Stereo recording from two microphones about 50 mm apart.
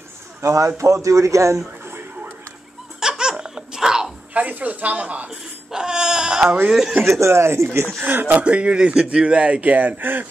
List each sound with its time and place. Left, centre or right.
0.4 s a man's voice: right
3.0 s laughter: centre
4.3 s speech: right
5.7 s speech: centre
7.1 s speech: right
8.0 s speech: right
8.5 s speech: right